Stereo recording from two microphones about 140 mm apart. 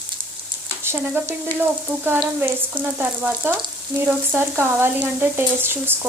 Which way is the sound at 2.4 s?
15° right (ahead or behind).